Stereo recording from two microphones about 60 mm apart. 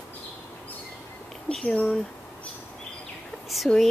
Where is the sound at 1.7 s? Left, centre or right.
Centre.